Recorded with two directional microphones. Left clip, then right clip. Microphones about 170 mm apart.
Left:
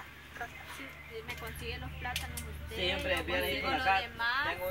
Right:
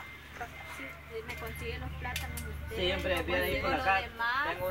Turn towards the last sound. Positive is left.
turn(degrees=0)  # may be behind; listen again after turning